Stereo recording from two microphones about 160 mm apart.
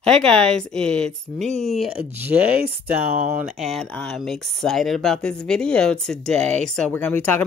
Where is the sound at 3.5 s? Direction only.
Centre (ahead or behind).